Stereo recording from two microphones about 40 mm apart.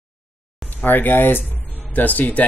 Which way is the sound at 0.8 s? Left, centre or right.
Left.